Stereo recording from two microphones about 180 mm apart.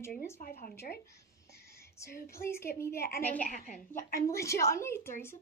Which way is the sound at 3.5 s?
45° left (ahead or behind).